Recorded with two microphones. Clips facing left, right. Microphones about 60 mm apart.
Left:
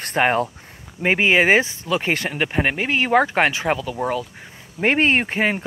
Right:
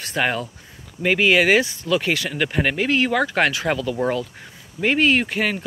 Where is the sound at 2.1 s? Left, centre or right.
Left.